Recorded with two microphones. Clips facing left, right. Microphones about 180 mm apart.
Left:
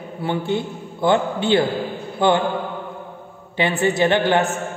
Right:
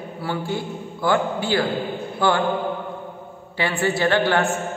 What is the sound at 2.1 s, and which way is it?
Mantra, 20° left (ahead or behind).